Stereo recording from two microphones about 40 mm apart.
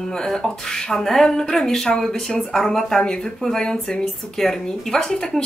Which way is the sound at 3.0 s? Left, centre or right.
Left.